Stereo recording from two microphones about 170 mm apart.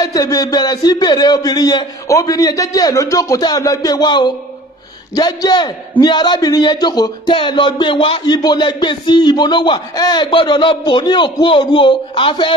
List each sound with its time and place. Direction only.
0.0 s a man's voice: 20° left (ahead or behind)